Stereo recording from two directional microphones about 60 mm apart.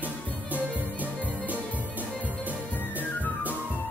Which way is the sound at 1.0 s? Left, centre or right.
Left.